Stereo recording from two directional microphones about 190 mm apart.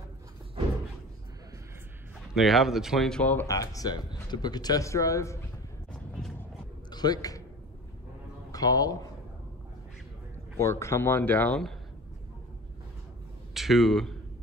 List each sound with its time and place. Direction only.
2.3 s speech: centre (ahead or behind); by 5.4 s 15° left (ahead or behind)
6.9 s a sound: 20° left (ahead or behind)
8.5 s a man's voice: 20° left (ahead or behind)
10.6 s speech: 15° left (ahead or behind)
13.5 s speech: centre (ahead or behind)